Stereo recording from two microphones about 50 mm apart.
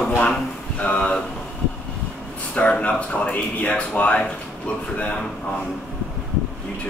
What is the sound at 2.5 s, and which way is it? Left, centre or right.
Speech, left.